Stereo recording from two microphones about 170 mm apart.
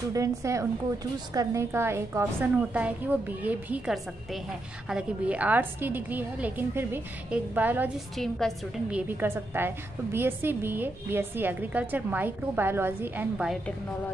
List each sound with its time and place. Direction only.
0.1 s a woman's voice: 20° right (ahead or behind)
8.2 s a woman's voice: centre (ahead or behind)
9.0 s a woman's voice: 10° right (ahead or behind)